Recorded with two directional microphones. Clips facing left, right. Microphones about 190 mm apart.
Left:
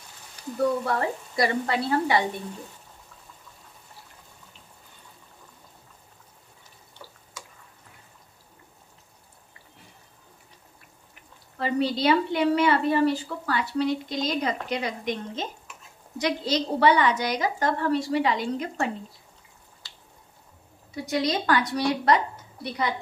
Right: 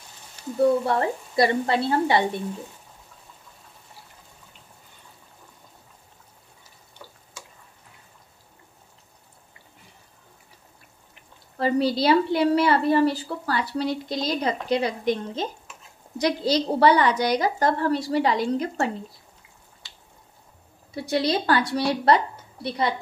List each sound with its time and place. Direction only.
0.8 s frying: 25° right (ahead or behind)
11.5 s a woman's voice: 35° right (ahead or behind)
20.9 s a woman's voice: 30° right (ahead or behind)